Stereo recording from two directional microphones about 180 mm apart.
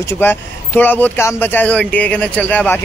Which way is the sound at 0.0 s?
15° left (ahead or behind).